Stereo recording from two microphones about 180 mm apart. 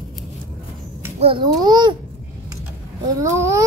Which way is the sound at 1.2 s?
30° right (ahead or behind).